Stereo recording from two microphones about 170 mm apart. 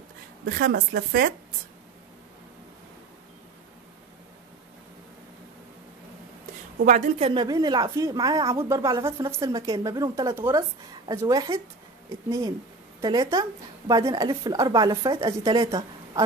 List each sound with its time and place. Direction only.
0.5 s a woman's voice: 60° right (ahead or behind)
6.8 s a woman's voice: 45° right (ahead or behind)
7.2 s speech: 25° right (ahead or behind)